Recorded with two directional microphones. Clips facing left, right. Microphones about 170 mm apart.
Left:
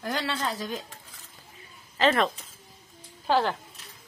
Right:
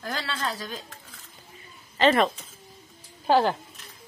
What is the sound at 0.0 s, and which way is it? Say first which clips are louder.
Speech: left 2 dB; 20° left (ahead or behind).